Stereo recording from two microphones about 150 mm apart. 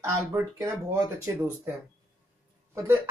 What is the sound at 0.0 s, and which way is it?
Speech, 20° right (ahead or behind).